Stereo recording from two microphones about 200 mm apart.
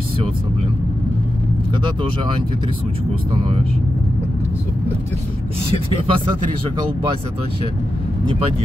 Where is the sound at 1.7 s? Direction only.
25° right (ahead or behind).